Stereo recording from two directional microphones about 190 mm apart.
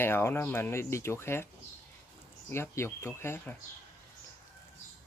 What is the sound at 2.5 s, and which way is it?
Speech, 15° left (ahead or behind).